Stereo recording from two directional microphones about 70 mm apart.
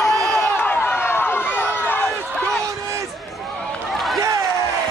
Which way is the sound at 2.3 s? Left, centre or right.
Centre.